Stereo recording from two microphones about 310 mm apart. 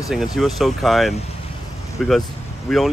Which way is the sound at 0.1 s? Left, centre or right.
Centre.